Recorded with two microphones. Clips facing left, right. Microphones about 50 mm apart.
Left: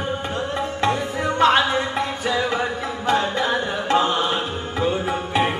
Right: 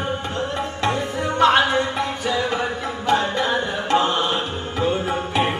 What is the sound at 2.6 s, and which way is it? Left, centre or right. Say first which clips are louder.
Music: even; left.